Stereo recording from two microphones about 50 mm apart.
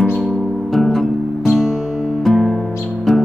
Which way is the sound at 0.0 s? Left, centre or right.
Centre.